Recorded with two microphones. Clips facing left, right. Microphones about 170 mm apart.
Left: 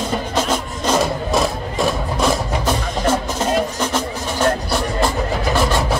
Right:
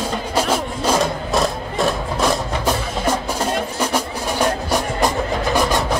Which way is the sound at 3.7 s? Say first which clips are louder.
Even; 10° right (ahead or behind).